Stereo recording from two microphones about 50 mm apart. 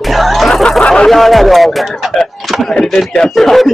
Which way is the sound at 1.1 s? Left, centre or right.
Centre.